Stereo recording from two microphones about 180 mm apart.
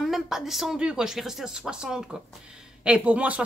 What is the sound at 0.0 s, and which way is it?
Speech, centre (ahead or behind).